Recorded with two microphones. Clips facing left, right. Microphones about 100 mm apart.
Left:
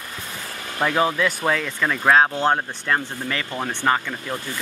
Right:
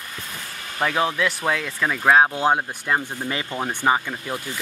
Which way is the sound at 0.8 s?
Centre (ahead or behind).